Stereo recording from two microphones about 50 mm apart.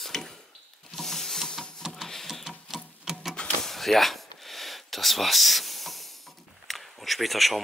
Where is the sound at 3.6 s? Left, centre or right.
Centre.